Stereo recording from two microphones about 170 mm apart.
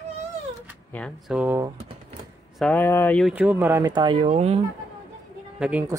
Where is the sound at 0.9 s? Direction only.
10° left (ahead or behind).